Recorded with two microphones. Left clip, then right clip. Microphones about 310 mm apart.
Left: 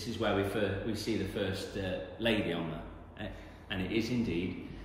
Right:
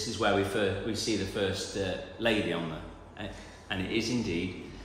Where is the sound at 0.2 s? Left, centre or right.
Centre.